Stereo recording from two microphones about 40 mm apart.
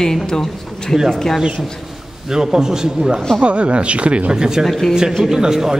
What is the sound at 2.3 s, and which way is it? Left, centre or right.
Speech, centre.